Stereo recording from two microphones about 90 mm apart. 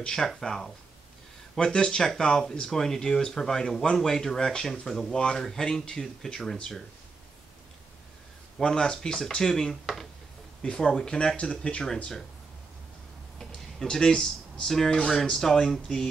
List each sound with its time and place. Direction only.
0.0 s speech: 5° left (ahead or behind)
8.5 s speech: 5° left (ahead or behind)
13.4 s speech: 5° left (ahead or behind)